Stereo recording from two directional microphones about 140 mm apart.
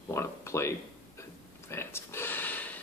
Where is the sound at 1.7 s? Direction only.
20° left (ahead or behind).